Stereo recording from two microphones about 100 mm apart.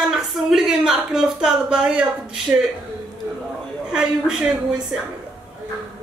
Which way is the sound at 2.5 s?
20° right (ahead or behind).